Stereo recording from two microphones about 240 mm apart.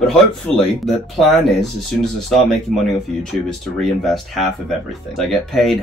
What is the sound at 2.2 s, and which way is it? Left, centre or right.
Speech, centre.